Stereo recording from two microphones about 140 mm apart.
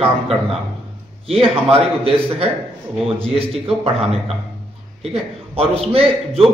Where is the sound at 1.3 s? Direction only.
45° right (ahead or behind).